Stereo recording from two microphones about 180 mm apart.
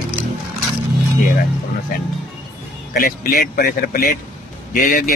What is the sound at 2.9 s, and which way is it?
A man's voice, 50° left (ahead or behind).